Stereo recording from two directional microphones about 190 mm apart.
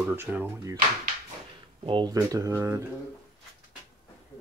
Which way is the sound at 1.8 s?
25° right (ahead or behind).